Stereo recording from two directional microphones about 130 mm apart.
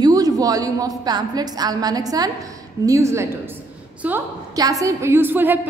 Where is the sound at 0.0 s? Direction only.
30° right (ahead or behind).